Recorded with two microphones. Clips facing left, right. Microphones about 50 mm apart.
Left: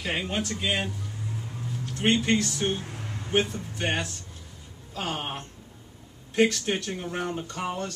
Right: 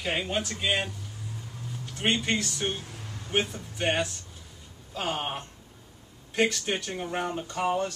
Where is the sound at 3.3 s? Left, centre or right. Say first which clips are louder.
Left 3 dB; centre.